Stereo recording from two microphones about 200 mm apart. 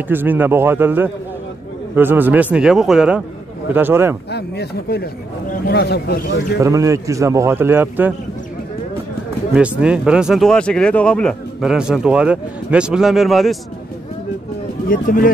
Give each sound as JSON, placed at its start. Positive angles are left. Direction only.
{"t": 0.1, "sound": "a man's voice", "side_deg": -10}
{"t": 4.3, "sound": "speech", "side_deg": 55}
{"t": 6.6, "sound": "a man's voice", "side_deg": -15}
{"t": 9.6, "sound": "speech", "side_deg": -5}
{"t": 14.9, "sound": "speech", "side_deg": 45}